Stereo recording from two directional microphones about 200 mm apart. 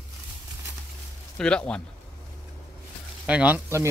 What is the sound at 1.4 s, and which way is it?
Speech, 5° left (ahead or behind).